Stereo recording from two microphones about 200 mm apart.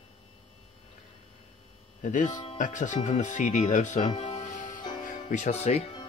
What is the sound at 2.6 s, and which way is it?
Speech, 40° left (ahead or behind).